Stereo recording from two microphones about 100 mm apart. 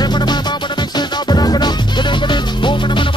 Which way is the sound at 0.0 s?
45° left (ahead or behind).